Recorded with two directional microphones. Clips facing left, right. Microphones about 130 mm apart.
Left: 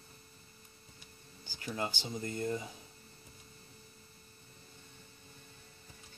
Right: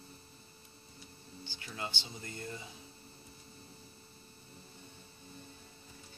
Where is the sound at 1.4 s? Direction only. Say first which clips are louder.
Left 5 dB; 40° left (ahead or behind).